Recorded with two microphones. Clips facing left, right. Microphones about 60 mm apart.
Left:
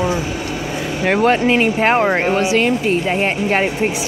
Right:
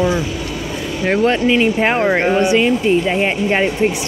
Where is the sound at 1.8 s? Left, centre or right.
Centre.